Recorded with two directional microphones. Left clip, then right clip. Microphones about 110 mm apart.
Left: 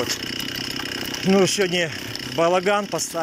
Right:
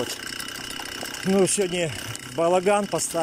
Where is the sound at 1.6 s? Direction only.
15° right (ahead or behind).